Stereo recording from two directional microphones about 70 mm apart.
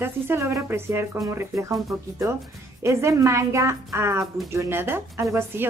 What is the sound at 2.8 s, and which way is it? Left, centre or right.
A woman's voice, right.